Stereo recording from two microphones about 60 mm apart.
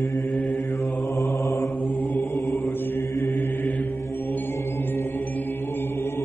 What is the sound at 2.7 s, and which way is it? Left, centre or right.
Mantra, left.